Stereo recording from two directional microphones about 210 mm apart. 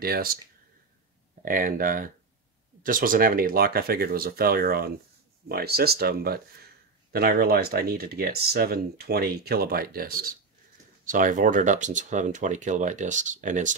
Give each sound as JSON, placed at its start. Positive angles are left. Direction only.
{"t": 0.0, "sound": "speech", "side_deg": -45}
{"t": 1.4, "sound": "speech", "side_deg": -40}